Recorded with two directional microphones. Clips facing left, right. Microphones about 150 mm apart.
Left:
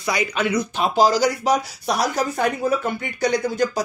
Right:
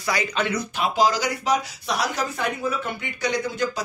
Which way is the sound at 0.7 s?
35° left (ahead or behind).